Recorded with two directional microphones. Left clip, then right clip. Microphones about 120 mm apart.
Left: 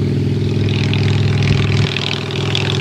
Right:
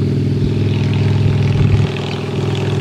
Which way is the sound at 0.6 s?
20° left (ahead or behind).